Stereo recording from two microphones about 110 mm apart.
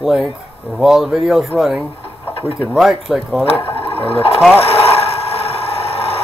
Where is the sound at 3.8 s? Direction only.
60° left (ahead or behind).